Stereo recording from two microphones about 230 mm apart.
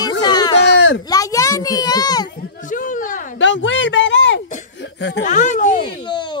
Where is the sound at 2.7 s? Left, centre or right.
Left.